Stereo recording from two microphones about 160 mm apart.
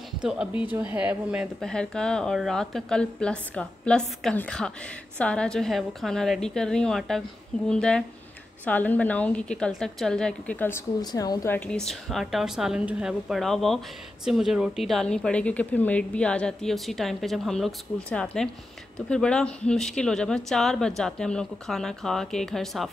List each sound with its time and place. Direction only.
0.2 s a woman's voice: 5° right (ahead or behind)
1.6 s a woman's voice: 5° left (ahead or behind)
11.0 s speech: 25° left (ahead or behind); by 22.8 s centre (ahead or behind)